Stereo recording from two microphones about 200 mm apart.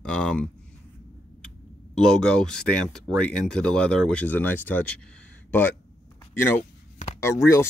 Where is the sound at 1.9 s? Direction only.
5° left (ahead or behind).